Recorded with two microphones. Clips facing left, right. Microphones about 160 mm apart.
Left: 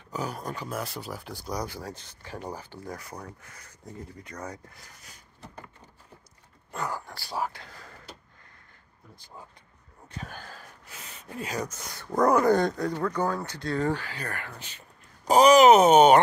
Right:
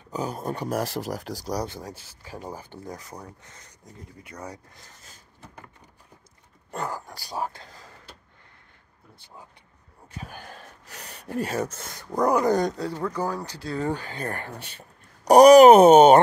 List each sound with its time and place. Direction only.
0.1 s speech: 20° right (ahead or behind)
0.7 s speech: 85° right
1.3 s speech: 35° right (ahead or behind)
1.7 s speech: 15° right (ahead or behind)
6.7 s speech: 40° right (ahead or behind)
7.1 s speech: 20° right (ahead or behind)
10.0 s speech: 10° right (ahead or behind)
10.9 s gasp: 40° right (ahead or behind)
11.1 s speech: 65° right (ahead or behind)
11.5 s speech: 30° right (ahead or behind)
12.2 s speech: 15° right (ahead or behind)
14.3 s speech: 35° right (ahead or behind)
15.2 s speech: 65° right (ahead or behind)